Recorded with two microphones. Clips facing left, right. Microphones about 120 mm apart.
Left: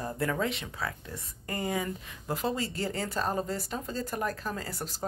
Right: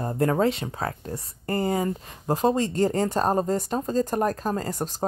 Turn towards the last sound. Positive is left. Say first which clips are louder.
# right 9 dB
turn(degrees=-40)  # may be behind; listen again after turning